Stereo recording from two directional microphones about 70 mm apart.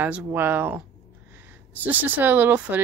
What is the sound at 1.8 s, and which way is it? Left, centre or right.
Speech, right.